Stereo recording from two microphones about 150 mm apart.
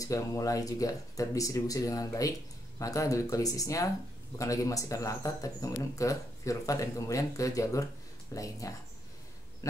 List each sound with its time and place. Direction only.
0.0 s speech: 20° left (ahead or behind)